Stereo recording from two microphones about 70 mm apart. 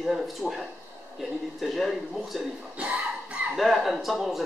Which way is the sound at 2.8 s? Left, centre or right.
Centre.